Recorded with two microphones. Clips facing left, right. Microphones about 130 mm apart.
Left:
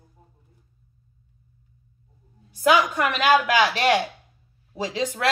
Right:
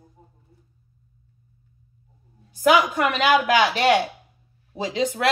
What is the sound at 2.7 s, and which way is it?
Speech, 25° right (ahead or behind).